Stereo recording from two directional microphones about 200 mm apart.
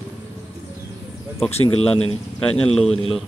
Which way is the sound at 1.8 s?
30° left (ahead or behind).